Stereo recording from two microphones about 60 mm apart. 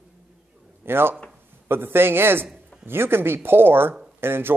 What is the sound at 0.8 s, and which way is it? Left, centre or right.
Speech, right.